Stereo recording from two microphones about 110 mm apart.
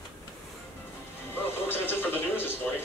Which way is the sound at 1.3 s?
20° left (ahead or behind).